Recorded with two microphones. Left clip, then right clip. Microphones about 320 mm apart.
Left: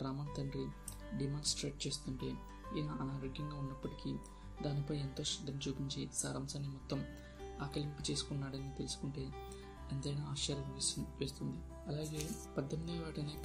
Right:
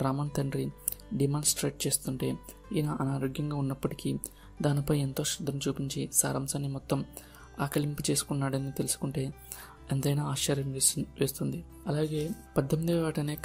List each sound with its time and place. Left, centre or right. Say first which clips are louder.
0.0 s speech: right 12 dB; right